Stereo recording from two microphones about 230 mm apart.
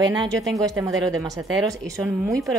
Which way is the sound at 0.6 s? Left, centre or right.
Centre.